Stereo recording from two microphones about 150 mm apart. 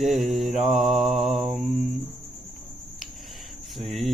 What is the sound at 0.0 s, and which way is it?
Mantra, centre (ahead or behind).